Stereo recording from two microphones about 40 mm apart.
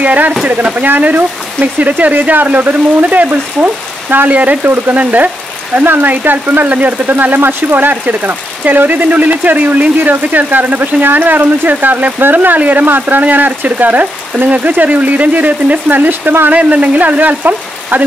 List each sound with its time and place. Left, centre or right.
0.0 s speech: right
4.3 s speech: right
5.8 s speech: right
16.0 s speech: right
16.5 s speech: right